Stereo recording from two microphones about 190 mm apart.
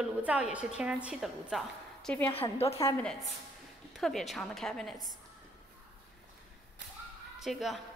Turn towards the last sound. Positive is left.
turn(degrees=0)  # may be behind; listen again after turning